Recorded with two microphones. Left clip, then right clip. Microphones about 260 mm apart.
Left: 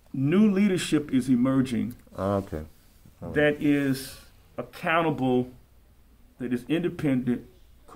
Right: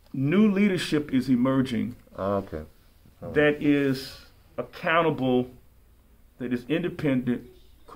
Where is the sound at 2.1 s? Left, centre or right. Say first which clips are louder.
Even; left.